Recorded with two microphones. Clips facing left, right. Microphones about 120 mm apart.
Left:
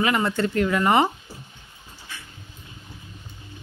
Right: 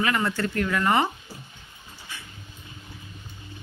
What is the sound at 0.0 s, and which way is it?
Speech, 20° left (ahead or behind).